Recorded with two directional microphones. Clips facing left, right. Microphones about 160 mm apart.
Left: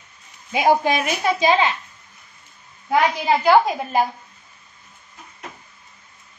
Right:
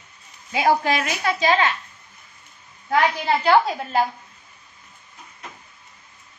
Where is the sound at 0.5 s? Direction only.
20° left (ahead or behind).